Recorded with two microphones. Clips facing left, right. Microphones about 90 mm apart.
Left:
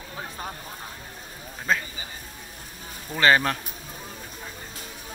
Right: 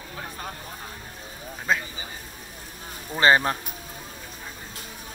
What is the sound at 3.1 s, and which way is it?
Speech, 25° right (ahead or behind).